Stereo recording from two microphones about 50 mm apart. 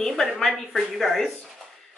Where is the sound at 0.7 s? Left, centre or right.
Centre.